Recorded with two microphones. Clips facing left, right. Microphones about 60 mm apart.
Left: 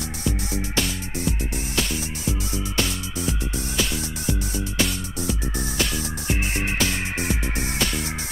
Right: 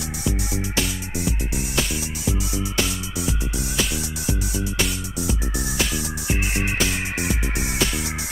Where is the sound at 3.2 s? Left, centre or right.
Left.